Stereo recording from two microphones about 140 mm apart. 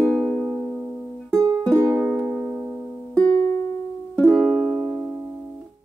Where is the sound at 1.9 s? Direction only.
5° right (ahead or behind).